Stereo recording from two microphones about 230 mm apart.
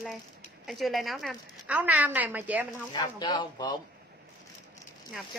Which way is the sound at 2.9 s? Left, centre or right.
Centre.